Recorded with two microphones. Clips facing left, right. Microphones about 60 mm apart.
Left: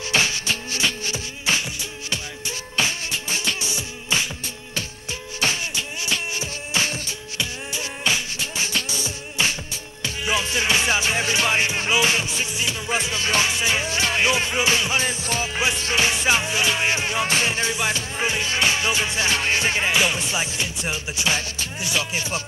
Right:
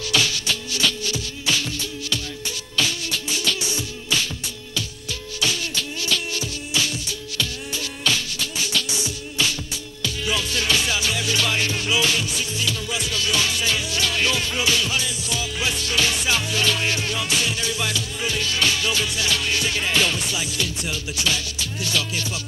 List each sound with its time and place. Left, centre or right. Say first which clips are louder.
0.1 s music: left 1 dB; left
5.4 s music: left 1 dB; left
19.9 s music: left 1 dB; centre